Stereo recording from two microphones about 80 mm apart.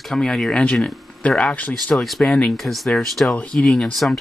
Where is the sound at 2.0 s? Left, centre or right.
Centre.